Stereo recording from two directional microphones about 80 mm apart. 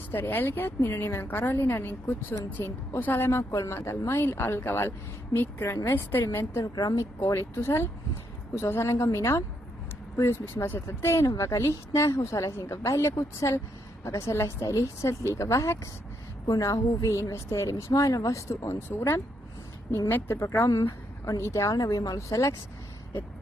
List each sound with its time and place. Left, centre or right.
0.1 s a woman's voice: left
6.6 s a woman's voice: left
7.0 s a woman's voice: left